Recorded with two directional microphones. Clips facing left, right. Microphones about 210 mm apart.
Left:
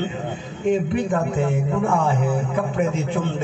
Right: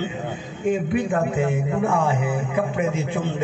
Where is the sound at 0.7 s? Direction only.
10° right (ahead or behind).